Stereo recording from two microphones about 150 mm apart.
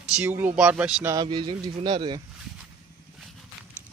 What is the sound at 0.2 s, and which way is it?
Speech, 10° right (ahead or behind).